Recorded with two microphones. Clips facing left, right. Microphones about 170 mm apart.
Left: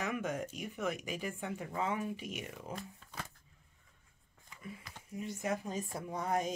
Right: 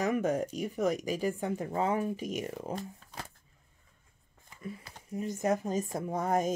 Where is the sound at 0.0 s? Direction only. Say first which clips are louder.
Right 8 dB; 40° right (ahead or behind).